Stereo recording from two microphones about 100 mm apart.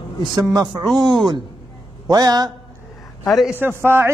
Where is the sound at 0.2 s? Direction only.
45° right (ahead or behind).